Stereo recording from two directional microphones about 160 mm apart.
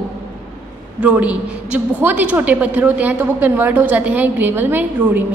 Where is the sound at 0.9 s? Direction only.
10° right (ahead or behind).